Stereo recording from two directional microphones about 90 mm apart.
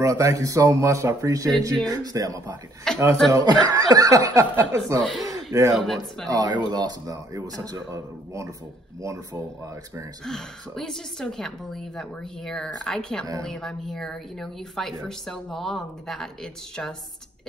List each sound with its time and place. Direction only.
0.0 s speech: 35° right (ahead or behind)
2.9 s speech: 5° left (ahead or behind)
3.3 s speech: 45° right (ahead or behind)
5.9 s a woman's voice: 5° left (ahead or behind)
6.3 s speech: 50° right (ahead or behind)
10.2 s a woman's voice: 5° left (ahead or behind)